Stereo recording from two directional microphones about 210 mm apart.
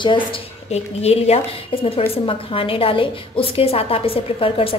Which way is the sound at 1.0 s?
30° left (ahead or behind).